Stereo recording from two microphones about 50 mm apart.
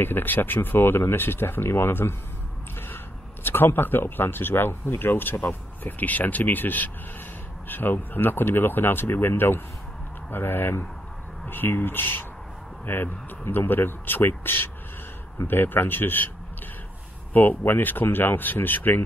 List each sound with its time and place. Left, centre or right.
0.0 s speech: left
3.4 s speech: left
17.3 s speech: left